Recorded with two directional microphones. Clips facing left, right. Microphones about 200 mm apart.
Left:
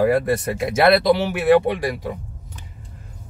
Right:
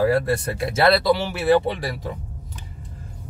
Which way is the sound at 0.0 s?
15° left (ahead or behind).